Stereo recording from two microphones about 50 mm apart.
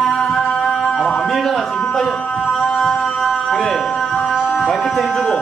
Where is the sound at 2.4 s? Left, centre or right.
Centre.